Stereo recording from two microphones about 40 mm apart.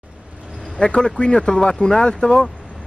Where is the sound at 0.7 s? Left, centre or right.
Left.